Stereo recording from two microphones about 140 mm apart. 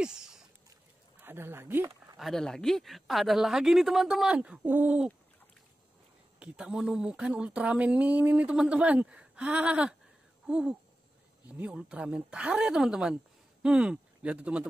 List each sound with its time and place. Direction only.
0.0 s a sound: 5° right (ahead or behind)
1.2 s speech: 15° right (ahead or behind)
2.1 s speech: centre (ahead or behind)
6.4 s speech: 5° right (ahead or behind)
10.4 s a sound: 5° right (ahead or behind)
11.4 s speech: 10° right (ahead or behind)